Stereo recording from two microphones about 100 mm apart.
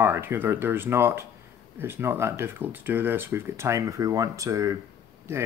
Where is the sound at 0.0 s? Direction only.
25° right (ahead or behind).